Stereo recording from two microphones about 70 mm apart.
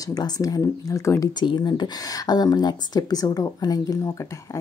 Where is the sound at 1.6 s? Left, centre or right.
Left.